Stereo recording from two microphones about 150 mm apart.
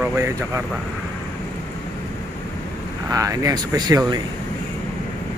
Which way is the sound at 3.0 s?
20° right (ahead or behind).